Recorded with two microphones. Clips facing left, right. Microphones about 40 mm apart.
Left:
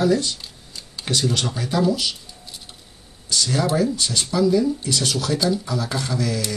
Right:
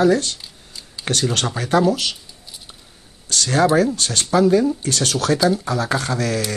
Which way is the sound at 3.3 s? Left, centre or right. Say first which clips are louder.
Right 5 dB; right.